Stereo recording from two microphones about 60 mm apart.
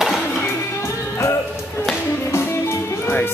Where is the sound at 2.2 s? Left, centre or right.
Left.